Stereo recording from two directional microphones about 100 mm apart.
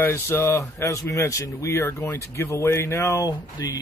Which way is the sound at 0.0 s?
20° left (ahead or behind).